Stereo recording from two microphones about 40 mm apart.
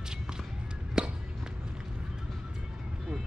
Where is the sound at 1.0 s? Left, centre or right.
Centre.